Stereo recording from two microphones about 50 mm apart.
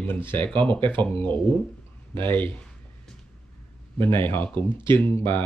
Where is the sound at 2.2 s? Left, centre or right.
Left.